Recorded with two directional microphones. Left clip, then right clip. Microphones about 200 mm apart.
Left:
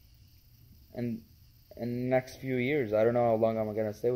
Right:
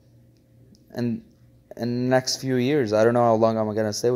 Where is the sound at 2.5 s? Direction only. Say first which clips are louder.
Right 8 dB; 45° right (ahead or behind).